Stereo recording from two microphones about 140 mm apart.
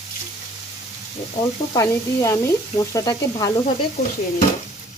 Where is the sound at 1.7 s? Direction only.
25° left (ahead or behind).